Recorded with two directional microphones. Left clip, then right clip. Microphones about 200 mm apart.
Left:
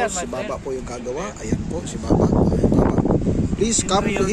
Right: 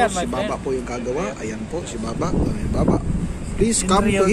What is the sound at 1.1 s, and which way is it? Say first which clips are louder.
Speech: even; 15° left (ahead or behind).